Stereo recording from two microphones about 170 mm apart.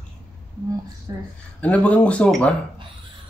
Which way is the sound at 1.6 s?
10° left (ahead or behind).